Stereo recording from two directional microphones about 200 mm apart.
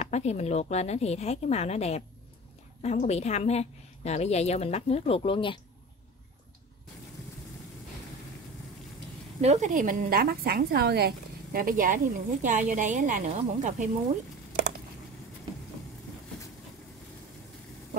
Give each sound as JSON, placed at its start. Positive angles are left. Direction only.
{"t": 0.0, "sound": "a woman's voice", "side_deg": 35}
{"t": 9.4, "sound": "a woman's voice", "side_deg": -35}